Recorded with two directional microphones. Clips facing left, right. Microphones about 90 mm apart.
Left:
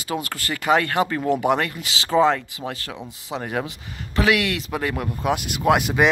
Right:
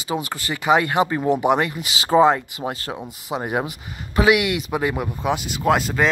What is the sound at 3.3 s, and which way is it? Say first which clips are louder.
Speech: right 3 dB; 15° right (ahead or behind).